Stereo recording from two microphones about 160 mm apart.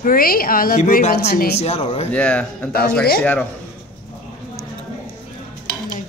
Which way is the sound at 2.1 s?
5° left (ahead or behind).